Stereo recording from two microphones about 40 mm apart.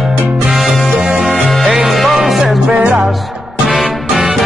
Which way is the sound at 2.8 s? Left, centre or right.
Right.